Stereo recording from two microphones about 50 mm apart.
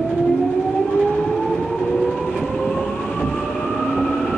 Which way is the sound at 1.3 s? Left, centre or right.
Centre.